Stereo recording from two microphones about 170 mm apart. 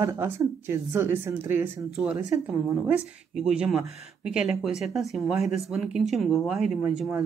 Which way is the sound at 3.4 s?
5° right (ahead or behind).